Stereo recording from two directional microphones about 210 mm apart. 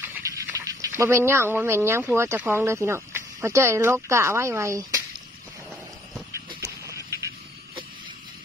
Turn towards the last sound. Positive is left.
turn(degrees=-15)  # may be behind; listen again after turning